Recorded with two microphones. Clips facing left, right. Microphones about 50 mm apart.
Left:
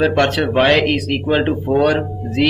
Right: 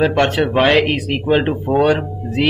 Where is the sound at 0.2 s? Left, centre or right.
Centre.